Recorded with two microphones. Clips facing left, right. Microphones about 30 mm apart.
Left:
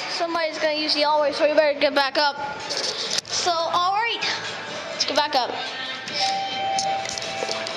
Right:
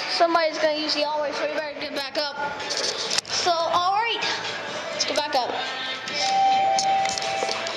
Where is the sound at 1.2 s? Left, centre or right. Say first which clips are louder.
Left 5 dB; left.